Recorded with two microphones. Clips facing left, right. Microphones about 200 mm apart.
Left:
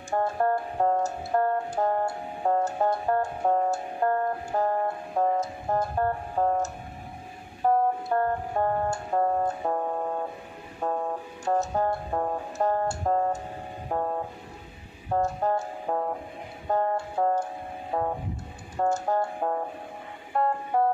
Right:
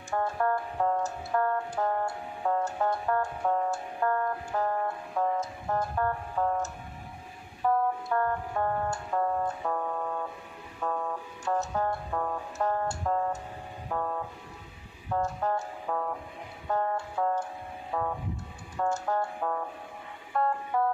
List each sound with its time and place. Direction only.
0.1 s music: 35° left (ahead or behind)
13.8 s vehicle: 35° left (ahead or behind)
15.0 s music: 35° left (ahead or behind)
17.9 s vehicle: 35° left (ahead or behind)
18.8 s music: 35° left (ahead or behind)